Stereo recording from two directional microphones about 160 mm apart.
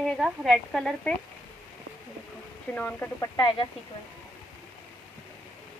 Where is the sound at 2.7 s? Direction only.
10° left (ahead or behind).